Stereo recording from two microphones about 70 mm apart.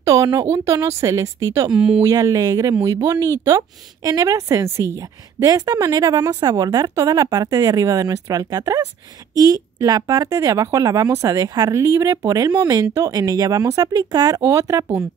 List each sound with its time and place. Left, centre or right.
0.0 s speech: right
0.8 s speech: right
1.7 s speech: centre
2.0 s a woman's voice: right
5.0 s a woman's voice: right